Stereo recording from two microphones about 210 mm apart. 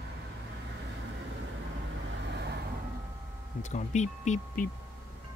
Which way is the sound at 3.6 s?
35° left (ahead or behind).